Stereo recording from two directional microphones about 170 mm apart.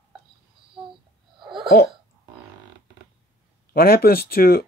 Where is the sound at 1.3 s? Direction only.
30° right (ahead or behind).